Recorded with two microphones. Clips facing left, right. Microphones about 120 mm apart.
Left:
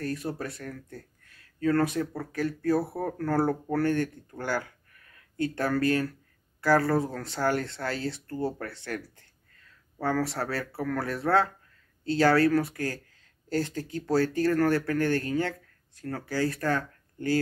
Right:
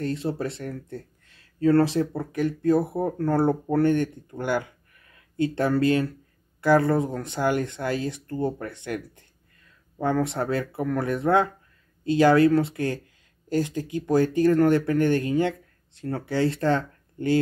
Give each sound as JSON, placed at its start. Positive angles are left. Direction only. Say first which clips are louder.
{"t": 0.0, "sound": "speech", "louder": "right 5 dB", "side_deg": -25}